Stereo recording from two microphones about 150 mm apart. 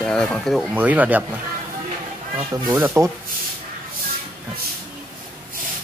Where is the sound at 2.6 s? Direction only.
15° right (ahead or behind).